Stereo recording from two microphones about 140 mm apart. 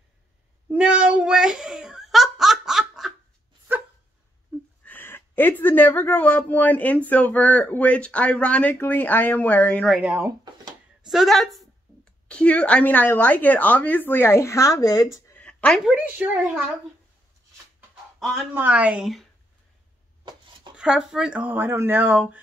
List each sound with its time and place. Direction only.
0.7 s giggle: 10° right (ahead or behind)
3.7 s dog: 15° right (ahead or behind)
4.5 s a sound: centre (ahead or behind)
4.8 s a woman's voice: 15° left (ahead or behind)
10.1 s drawer open or close: 25° right (ahead or behind)
11.1 s a woman's voice: centre (ahead or behind); by 15.3 s 25° left (ahead or behind)
15.3 s a sound: 10° left (ahead or behind)
15.8 s speech: 10° right (ahead or behind)
18.5 s speech: 15° right (ahead or behind)
20.2 s a sound: 35° right (ahead or behind)
20.7 s speech: 5° right (ahead or behind)